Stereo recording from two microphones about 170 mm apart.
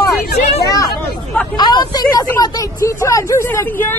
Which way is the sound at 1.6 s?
25° left (ahead or behind).